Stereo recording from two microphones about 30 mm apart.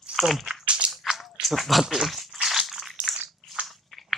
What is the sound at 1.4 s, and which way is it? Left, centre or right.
Speech, centre.